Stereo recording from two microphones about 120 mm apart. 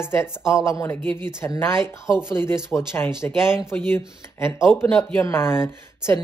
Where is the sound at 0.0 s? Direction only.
20° left (ahead or behind).